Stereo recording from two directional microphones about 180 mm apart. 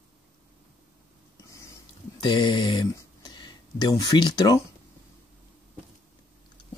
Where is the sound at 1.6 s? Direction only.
20° left (ahead or behind).